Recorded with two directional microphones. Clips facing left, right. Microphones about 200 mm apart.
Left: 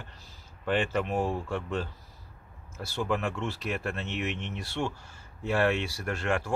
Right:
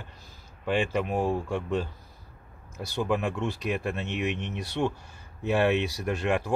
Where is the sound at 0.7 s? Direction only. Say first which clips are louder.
Right 1 dB; 10° right (ahead or behind).